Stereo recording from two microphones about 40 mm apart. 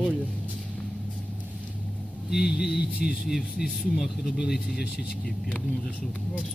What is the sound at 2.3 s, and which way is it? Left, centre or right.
Speech, centre.